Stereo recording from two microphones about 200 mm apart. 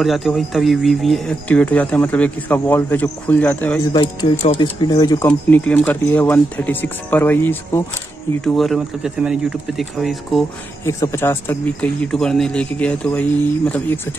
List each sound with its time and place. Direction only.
0.0 s speech: centre (ahead or behind)
3.9 s speech: 20° left (ahead or behind)
5.5 s speech: 5° left (ahead or behind)
10.9 s speech: 15° left (ahead or behind)